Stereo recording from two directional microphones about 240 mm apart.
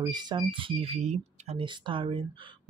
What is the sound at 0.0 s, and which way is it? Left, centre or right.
Speech, centre.